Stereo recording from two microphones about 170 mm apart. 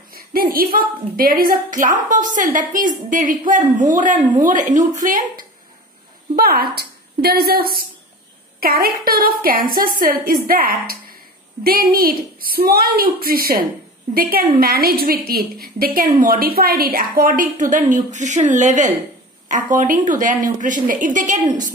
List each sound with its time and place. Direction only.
0.1 s a woman's voice: 60° right (ahead or behind)
6.3 s a woman's voice: 65° right (ahead or behind); by 21.7 s 45° right (ahead or behind)